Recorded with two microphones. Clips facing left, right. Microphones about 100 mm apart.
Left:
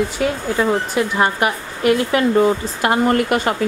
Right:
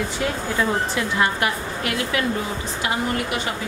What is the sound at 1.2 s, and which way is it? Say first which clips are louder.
Speech: left 2 dB; 25° left (ahead or behind).